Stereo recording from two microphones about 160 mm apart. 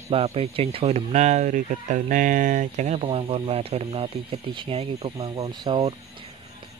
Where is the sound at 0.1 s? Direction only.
40° right (ahead or behind).